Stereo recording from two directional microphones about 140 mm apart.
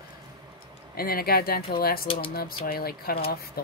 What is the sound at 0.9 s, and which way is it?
Speech, 90° left.